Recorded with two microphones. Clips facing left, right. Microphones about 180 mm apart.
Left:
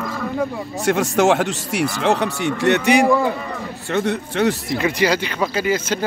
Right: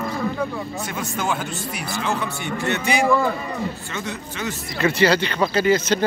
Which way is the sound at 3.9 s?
65° left (ahead or behind).